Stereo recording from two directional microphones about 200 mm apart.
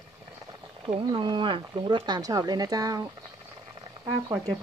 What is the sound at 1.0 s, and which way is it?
Speech, 25° right (ahead or behind).